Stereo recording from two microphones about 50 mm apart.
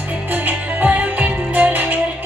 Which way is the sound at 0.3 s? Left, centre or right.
Right.